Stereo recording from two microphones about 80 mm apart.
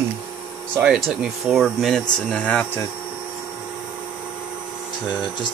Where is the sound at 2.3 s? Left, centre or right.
Left.